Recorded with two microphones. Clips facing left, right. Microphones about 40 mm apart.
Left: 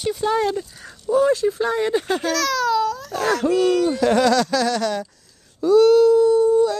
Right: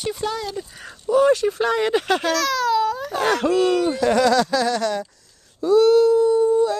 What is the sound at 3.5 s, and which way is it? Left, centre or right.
Speech, centre.